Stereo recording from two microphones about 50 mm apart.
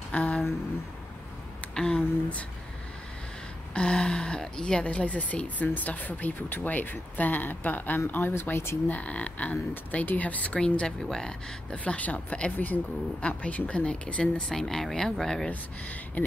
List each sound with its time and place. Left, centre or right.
0.1 s a sound: left
1.8 s speech: centre
3.7 s speech: centre
4.8 s speech: left
8.8 s speech: left; by 11.3 s centre
11.7 s speech: left
12.5 s speech: left
14.5 s speech: centre
16.2 s speech: left